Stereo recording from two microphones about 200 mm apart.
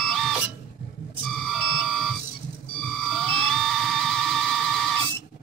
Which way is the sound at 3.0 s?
Centre (ahead or behind).